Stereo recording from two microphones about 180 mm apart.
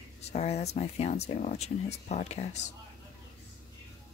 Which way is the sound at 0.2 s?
35° left (ahead or behind).